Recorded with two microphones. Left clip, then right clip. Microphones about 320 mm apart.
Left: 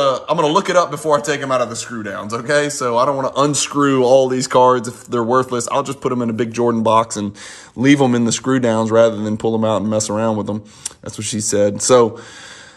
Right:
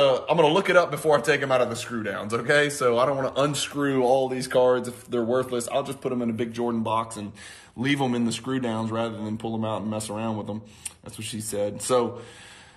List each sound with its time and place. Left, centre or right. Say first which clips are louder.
0.0 s speech: left 4 dB; centre
6.2 s a man's voice: left 8 dB; left
6.8 s speech: left 12 dB; centre